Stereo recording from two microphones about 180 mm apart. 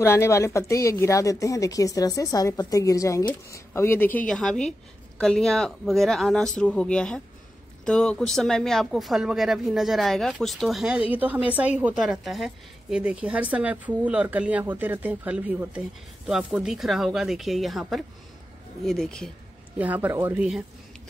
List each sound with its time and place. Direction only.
0.0 s speech: 15° left (ahead or behind)
19.8 s speech: 10° right (ahead or behind)